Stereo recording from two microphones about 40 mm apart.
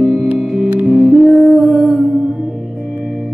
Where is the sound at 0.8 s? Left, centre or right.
Centre.